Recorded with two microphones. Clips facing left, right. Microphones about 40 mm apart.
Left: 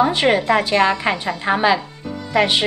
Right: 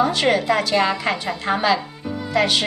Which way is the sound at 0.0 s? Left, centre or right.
Left.